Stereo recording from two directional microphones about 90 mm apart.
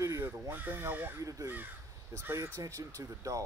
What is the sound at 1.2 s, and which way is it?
Speech, 35° right (ahead or behind).